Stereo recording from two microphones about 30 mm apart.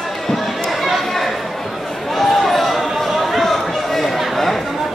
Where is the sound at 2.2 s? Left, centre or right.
Centre.